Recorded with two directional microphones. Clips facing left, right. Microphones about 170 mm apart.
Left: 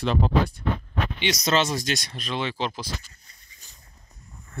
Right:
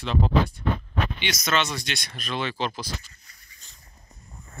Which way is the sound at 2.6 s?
25° left (ahead or behind).